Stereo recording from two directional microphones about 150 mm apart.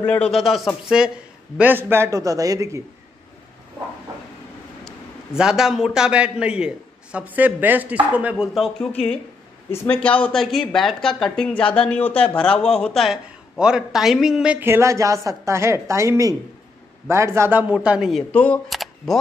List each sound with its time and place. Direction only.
0.0 s a man's voice: 10° left (ahead or behind); by 2.8 s 20° right (ahead or behind)
4.8 s a man's voice: 5° right (ahead or behind)
8.5 s speech: centre (ahead or behind)
9.7 s a man's voice: 15° left (ahead or behind); by 18.2 s 5° right (ahead or behind)
18.3 s speech: 10° left (ahead or behind)
18.7 s camera: centre (ahead or behind)